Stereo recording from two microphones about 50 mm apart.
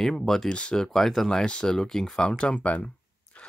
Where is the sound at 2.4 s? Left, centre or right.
Left.